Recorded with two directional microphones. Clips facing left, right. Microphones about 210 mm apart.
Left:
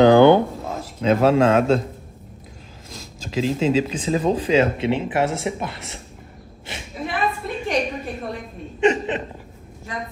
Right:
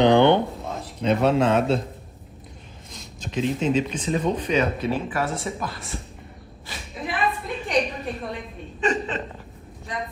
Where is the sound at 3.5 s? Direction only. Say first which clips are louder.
Left 3 dB; 90° left.